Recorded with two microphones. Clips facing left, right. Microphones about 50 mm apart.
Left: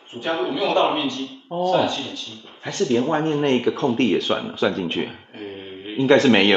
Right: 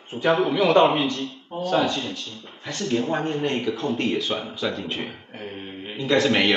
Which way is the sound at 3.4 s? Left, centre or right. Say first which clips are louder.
Left 5 dB; left.